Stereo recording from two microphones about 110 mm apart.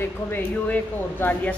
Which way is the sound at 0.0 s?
20° left (ahead or behind).